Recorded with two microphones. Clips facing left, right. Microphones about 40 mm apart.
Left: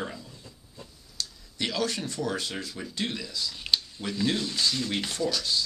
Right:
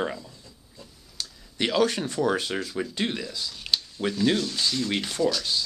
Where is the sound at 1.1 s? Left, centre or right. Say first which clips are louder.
Right 2 dB; centre.